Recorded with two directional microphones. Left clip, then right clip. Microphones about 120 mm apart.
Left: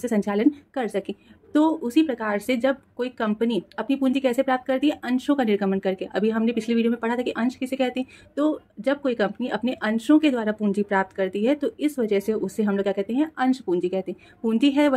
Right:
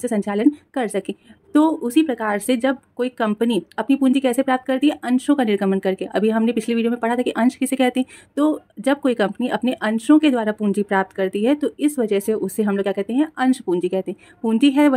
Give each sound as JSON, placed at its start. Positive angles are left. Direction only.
{"t": 0.0, "sound": "a woman's voice", "side_deg": -30}